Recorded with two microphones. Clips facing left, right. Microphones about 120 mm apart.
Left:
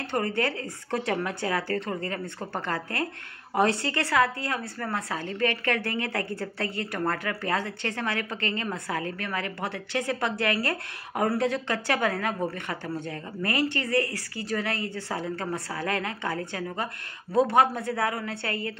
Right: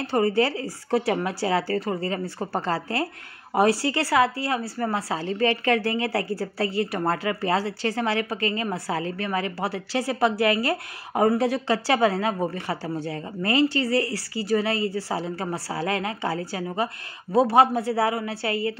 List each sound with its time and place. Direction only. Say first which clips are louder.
0.4 s a woman's voice: right 5 dB; 25° right (ahead or behind)
2.7 s a woman's voice: right 4 dB; 25° right (ahead or behind)